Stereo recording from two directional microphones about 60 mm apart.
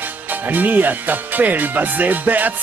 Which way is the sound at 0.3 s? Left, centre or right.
Right.